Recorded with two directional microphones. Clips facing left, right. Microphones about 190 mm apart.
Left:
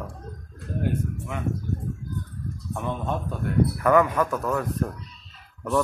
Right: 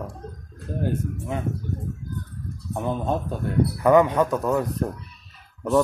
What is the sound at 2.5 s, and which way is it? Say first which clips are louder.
Speech: right 4 dB; 35° right (ahead or behind).